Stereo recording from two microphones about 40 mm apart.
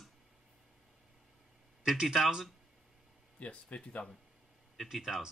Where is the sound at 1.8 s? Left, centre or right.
Centre.